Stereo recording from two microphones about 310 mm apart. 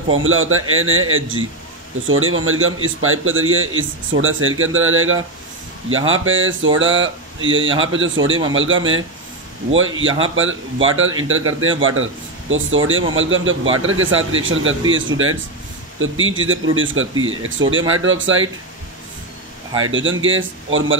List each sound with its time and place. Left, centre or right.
0.1 s a man's voice: right
19.8 s a man's voice: right